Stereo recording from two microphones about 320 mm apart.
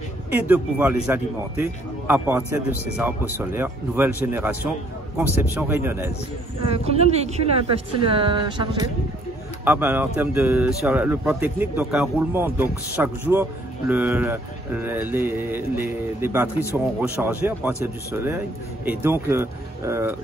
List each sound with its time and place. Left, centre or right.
0.3 s a woman's voice: centre
6.6 s a woman's voice: centre